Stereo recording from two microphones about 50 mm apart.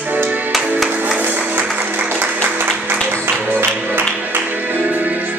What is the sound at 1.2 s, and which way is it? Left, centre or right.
Music, right.